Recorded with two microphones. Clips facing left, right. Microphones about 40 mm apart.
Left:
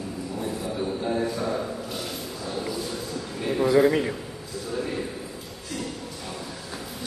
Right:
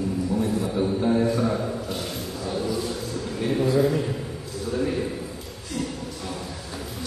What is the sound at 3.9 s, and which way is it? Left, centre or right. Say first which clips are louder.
Speech: left 2 dB; left.